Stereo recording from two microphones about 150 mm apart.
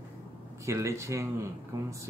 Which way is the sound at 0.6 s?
20° right (ahead or behind).